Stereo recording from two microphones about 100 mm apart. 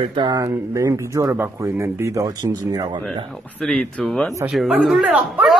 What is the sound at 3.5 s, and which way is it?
Speech, 10° left (ahead or behind).